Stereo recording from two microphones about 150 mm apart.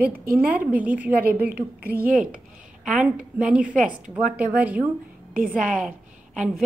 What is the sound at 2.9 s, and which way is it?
A woman's voice, 5° right (ahead or behind).